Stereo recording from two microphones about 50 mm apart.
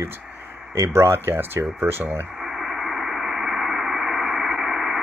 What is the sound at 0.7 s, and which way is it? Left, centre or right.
Speech, right.